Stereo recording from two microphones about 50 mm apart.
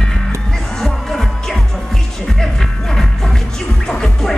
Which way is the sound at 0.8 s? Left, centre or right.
Centre.